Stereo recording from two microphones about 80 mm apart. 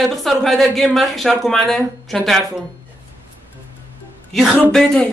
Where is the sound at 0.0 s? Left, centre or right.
Centre.